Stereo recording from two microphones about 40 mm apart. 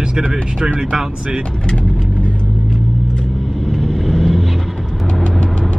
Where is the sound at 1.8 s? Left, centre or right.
Centre.